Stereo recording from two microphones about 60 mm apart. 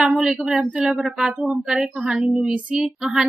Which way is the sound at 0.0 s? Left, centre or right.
Centre.